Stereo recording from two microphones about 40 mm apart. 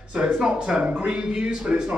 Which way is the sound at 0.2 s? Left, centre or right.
Right.